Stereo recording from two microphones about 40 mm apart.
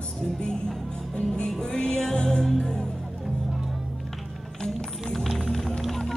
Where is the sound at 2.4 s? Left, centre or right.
Centre.